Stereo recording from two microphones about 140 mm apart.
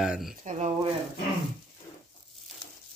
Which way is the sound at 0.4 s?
60° right (ahead or behind).